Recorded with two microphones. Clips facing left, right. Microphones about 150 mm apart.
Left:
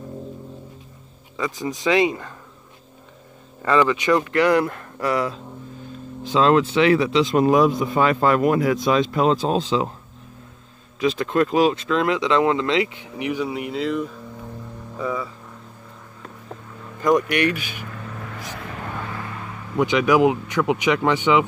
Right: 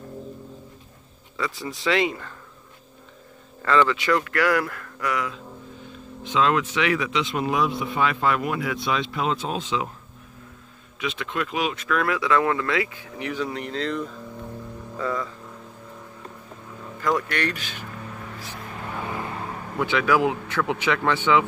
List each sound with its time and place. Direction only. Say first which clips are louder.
1.3 s speech: left 4 dB; 20° left (ahead or behind)
3.6 s speech: left 2 dB; 15° left (ahead or behind); by 9.8 s 35° left (ahead or behind)
11.0 s speech: left 9 dB; 40° left (ahead or behind); by 15.3 s 10° left (ahead or behind)
17.0 s speech: left 6 dB; 15° left (ahead or behind)
19.8 s speech: left 5 dB; 15° left (ahead or behind)